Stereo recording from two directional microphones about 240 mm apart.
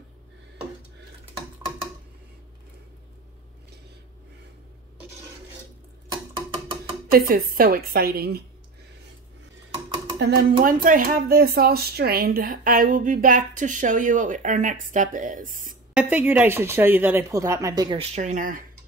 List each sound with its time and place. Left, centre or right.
7.1 s speech: right
10.1 s speech: right
15.9 s speech: centre; by 18.6 s right